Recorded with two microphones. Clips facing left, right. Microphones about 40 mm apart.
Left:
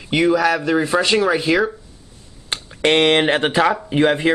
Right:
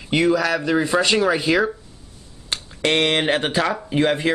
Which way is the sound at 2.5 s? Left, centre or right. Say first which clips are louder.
Left 4 dB; left.